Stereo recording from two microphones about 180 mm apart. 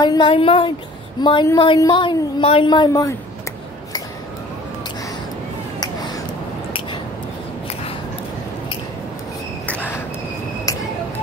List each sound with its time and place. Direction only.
0.0 s speech: 25° left (ahead or behind)
5.8 s a sound: 20° left (ahead or behind)
9.7 s cricket: 10° left (ahead or behind)